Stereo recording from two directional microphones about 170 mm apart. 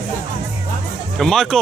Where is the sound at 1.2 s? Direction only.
Centre (ahead or behind).